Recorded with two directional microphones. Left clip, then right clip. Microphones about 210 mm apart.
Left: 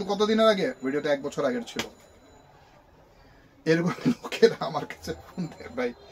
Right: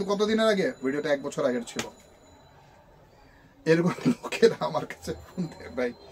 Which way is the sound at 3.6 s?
5° right (ahead or behind).